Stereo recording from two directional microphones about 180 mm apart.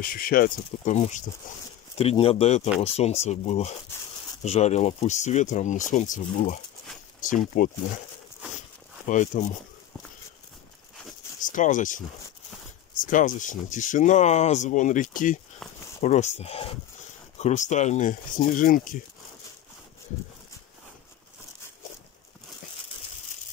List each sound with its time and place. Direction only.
0.0 s speech: 50° left (ahead or behind)
2.0 s speech: 35° left (ahead or behind)
9.0 s speech: 45° left (ahead or behind)
11.4 s speech: 45° left (ahead or behind)